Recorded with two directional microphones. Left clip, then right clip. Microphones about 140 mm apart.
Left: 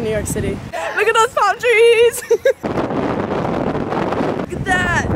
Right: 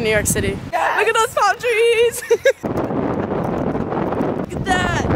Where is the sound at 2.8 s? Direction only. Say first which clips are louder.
Left 2 dB; 35° right (ahead or behind).